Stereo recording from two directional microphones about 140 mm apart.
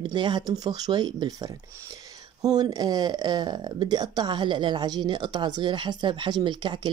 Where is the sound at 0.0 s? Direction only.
30° right (ahead or behind).